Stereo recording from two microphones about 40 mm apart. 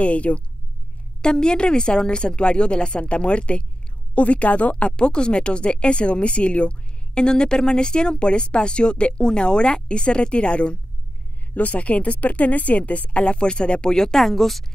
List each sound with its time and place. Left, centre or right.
0.0 s speech: left
1.2 s speech: left; by 14.6 s centre